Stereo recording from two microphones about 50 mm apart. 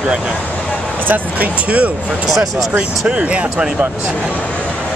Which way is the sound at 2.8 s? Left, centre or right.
Right.